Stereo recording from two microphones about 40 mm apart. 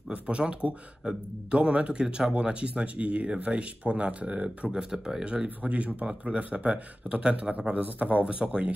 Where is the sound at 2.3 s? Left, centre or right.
Right.